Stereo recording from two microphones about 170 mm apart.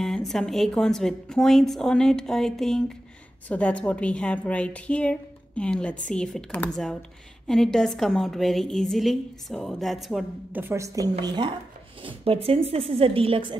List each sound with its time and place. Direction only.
0.0 s a woman's voice: centre (ahead or behind)
10.6 s a woman's voice: 15° right (ahead or behind); by 13.6 s 30° right (ahead or behind)